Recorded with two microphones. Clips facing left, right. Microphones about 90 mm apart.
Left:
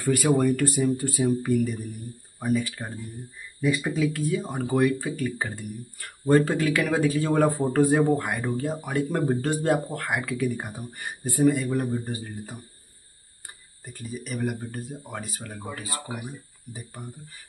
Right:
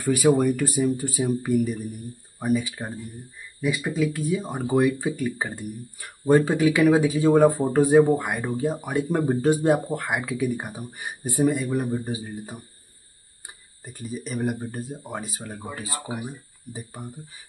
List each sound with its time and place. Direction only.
0.0 s speech: 15° right (ahead or behind)
3.6 s speech: 5° right (ahead or behind)
4.3 s speech: 15° right (ahead or behind)
8.4 s speech: centre (ahead or behind)
8.6 s speech: 10° right (ahead or behind)
12.2 s speech: 15° right (ahead or behind)
13.8 s speech: 20° right (ahead or behind)
15.4 s speech: centre (ahead or behind)
15.7 s speech: 25° right (ahead or behind)